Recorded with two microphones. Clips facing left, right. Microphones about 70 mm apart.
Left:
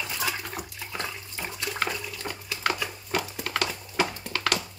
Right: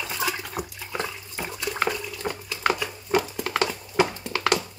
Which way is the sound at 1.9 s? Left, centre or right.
Centre.